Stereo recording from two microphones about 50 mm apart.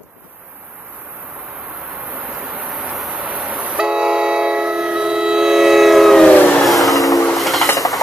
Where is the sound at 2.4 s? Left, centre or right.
Right.